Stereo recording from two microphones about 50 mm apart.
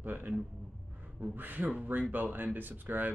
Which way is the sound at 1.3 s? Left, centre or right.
Right.